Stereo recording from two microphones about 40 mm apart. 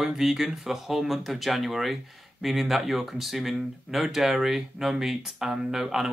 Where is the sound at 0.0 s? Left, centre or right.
Centre.